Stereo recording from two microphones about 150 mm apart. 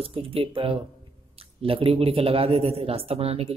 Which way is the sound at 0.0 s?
40° right (ahead or behind).